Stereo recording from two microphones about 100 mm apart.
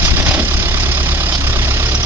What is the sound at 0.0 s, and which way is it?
Vehicle, 25° right (ahead or behind).